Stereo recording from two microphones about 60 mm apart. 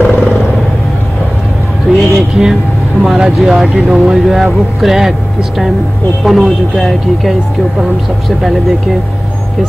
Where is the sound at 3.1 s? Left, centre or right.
Centre.